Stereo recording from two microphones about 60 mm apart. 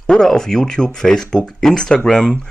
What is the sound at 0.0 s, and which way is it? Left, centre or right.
Speech, centre.